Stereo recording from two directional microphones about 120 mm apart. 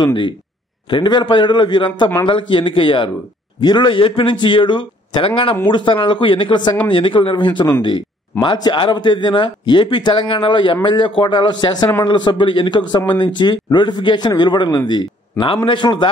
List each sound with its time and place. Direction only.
0.0 s speech: 40° left (ahead or behind)